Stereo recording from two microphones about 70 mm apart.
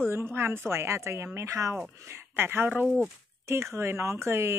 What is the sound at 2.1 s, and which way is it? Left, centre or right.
A woman's voice, right.